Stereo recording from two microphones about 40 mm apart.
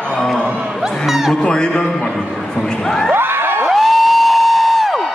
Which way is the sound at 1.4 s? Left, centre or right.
Left.